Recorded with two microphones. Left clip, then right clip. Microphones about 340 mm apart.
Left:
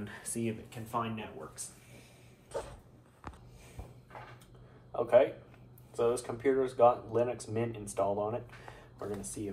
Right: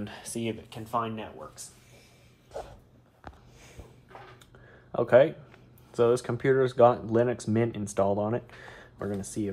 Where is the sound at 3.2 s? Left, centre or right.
Centre.